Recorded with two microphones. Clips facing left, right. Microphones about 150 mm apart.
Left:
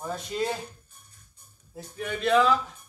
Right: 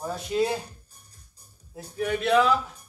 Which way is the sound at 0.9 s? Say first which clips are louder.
Right 1 dB; 35° right (ahead or behind).